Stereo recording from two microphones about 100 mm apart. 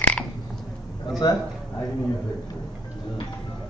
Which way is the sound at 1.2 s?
50° left (ahead or behind).